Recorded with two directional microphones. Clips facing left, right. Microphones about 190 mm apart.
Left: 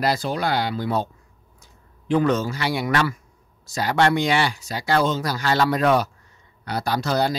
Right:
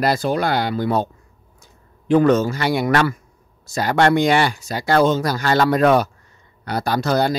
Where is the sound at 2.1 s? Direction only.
50° right (ahead or behind).